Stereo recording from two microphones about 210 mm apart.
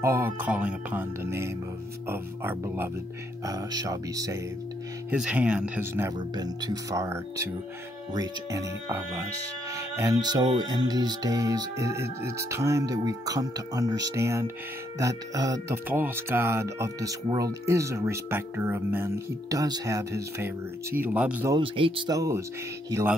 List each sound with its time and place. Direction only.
0.0 s speech: 10° right (ahead or behind)
5.1 s speech: 5° right (ahead or behind)
21.5 s speech: 25° right (ahead or behind)